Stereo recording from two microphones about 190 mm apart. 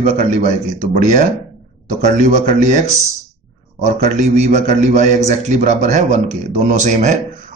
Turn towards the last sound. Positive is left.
turn(degrees=-40)  # may be behind; listen again after turning